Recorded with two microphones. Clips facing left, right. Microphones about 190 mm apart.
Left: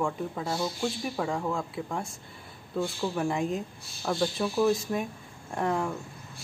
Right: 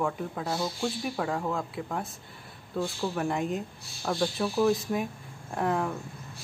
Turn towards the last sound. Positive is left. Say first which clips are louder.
# even
turn(degrees=0)  # may be behind; listen again after turning